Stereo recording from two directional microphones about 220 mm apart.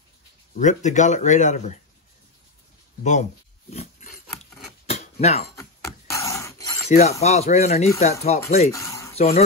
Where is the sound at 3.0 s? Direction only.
30° left (ahead or behind).